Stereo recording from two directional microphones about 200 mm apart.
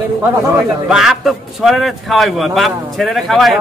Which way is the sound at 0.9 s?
Centre (ahead or behind).